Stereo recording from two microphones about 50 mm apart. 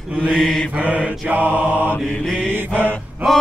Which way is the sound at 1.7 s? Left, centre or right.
Left.